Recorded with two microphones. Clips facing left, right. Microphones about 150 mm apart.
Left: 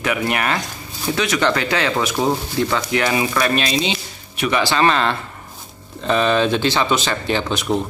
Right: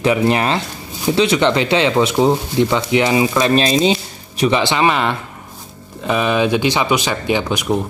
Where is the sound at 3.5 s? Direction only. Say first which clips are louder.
Right 6 dB; 35° right (ahead or behind).